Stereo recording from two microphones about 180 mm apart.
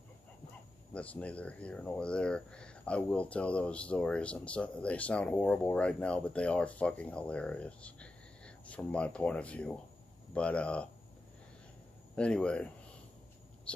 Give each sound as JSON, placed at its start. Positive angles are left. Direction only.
{"t": 0.9, "sound": "speech", "side_deg": 5}
{"t": 12.2, "sound": "speech", "side_deg": 5}
{"t": 13.7, "sound": "a sound", "side_deg": 5}